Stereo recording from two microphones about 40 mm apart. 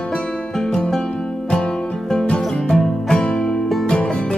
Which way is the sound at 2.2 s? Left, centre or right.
Centre.